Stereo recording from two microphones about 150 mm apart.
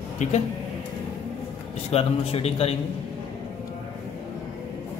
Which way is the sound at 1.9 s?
40° left (ahead or behind).